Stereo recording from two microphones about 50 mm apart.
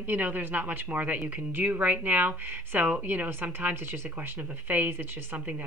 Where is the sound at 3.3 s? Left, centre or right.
Right.